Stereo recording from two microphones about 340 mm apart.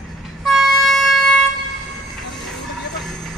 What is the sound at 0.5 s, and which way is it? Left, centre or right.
Vehicle, centre.